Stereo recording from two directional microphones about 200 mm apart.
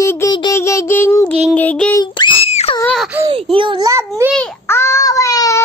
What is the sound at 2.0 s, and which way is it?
Screaming, 20° left (ahead or behind).